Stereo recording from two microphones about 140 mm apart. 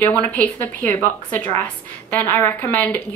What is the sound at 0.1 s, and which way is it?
A woman's voice, 10° left (ahead or behind).